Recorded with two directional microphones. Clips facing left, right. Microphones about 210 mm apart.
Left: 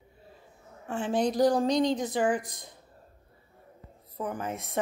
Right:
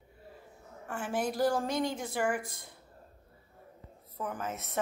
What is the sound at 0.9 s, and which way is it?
A woman's voice, 20° left (ahead or behind).